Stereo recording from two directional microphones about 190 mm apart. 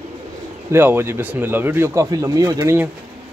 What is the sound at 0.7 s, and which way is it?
Speech, 10° right (ahead or behind).